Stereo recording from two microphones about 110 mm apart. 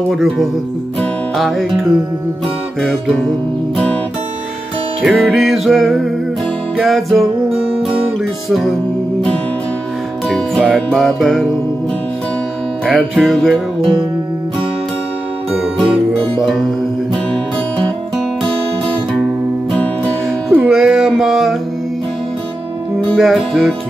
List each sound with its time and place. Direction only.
0.1 s music: centre (ahead or behind)
5.0 s music: centre (ahead or behind)
10.2 s music: centre (ahead or behind)
12.8 s music: 5° right (ahead or behind)
15.6 s music: 5° right (ahead or behind)
20.5 s music: 10° right (ahead or behind)
22.9 s music: centre (ahead or behind)